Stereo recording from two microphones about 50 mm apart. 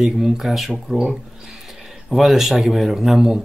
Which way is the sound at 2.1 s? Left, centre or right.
Centre.